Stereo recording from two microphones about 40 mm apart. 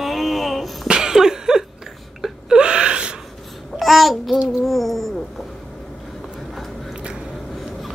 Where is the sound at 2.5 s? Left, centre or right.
Right.